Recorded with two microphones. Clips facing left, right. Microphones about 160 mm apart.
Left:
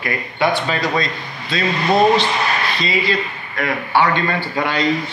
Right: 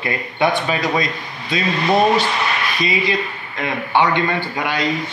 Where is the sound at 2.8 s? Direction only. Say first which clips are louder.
Even; 15° right (ahead or behind).